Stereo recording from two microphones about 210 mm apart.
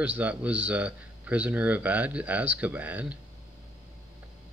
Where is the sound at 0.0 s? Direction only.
5° right (ahead or behind).